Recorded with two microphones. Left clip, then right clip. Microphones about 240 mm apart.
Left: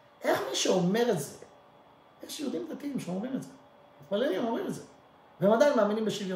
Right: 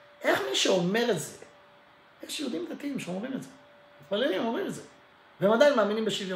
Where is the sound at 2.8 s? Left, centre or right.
Centre.